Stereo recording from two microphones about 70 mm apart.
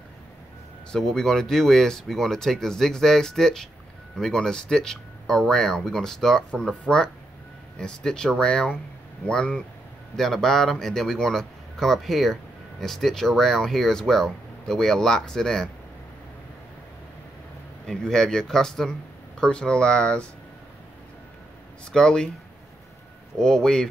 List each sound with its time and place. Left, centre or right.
0.9 s speech: centre
7.8 s speech: centre
17.8 s speech: centre
21.9 s speech: centre
23.3 s speech: centre